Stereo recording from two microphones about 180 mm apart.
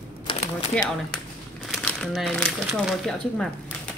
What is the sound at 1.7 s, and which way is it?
Speech, centre (ahead or behind).